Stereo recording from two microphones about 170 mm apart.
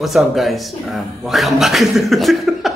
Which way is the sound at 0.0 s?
Centre (ahead or behind).